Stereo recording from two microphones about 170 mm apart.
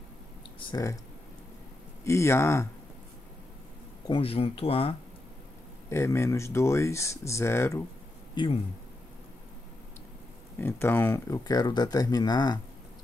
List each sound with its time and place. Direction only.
0.6 s speech: 25° left (ahead or behind)
2.0 s speech: 15° left (ahead or behind)
4.1 s speech: 35° left (ahead or behind)
5.9 s speech: 15° left (ahead or behind)
8.4 s speech: 30° left (ahead or behind)
10.6 s speech: 15° left (ahead or behind)